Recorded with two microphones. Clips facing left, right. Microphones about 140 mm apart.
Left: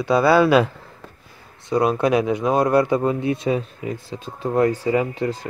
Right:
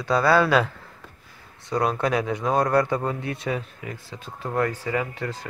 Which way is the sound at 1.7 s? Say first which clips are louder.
Left 5 dB; 15° left (ahead or behind).